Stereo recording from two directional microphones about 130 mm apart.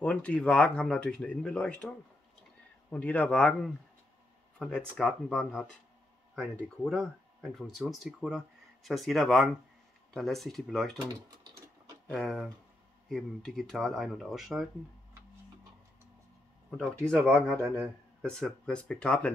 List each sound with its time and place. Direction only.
0.0 s speech: 10° left (ahead or behind)
11.1 s speech: 30° right (ahead or behind)
12.1 s speech: centre (ahead or behind)
17.1 s speech: 5° left (ahead or behind)